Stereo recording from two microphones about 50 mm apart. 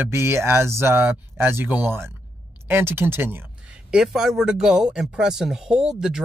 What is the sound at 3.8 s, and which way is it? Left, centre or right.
Speech, centre.